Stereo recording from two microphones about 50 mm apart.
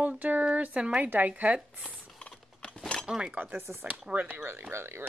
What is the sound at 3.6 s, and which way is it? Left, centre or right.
Speech, right.